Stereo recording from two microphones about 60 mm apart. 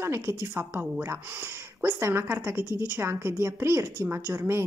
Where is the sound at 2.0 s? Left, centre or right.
Right.